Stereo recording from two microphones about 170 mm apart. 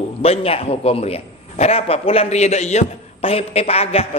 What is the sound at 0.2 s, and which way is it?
A man's voice, 35° left (ahead or behind).